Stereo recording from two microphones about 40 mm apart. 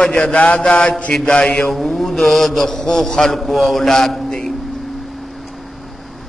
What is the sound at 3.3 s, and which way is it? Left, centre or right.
A man's voice, centre.